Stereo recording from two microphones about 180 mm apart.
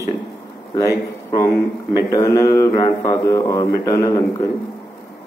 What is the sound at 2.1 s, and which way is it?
Speech, 20° left (ahead or behind).